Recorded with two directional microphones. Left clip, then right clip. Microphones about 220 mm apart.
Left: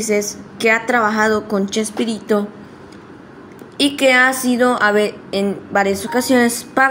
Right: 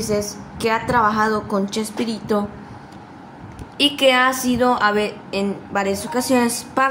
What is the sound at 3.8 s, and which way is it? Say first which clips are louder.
A woman's voice: left 2 dB; 20° left (ahead or behind).